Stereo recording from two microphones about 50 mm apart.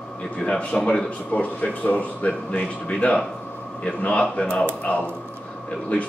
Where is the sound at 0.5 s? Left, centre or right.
Left.